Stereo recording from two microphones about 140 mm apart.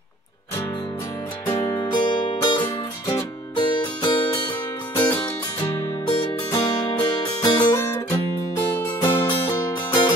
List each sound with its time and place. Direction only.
1.5 s music: 25° left (ahead or behind)
5.1 s music: 15° left (ahead or behind)
5.7 s music: 30° left (ahead or behind)